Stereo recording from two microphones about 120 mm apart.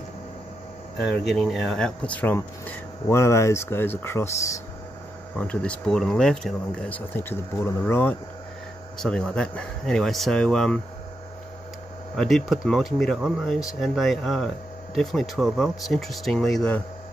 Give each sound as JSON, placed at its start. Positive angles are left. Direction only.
{"t": 0.9, "sound": "speech", "side_deg": 0}
{"t": 5.3, "sound": "speech", "side_deg": 10}
{"t": 7.2, "sound": "speech", "side_deg": 20}
{"t": 8.9, "sound": "speech", "side_deg": 5}
{"t": 12.2, "sound": "speech", "side_deg": 0}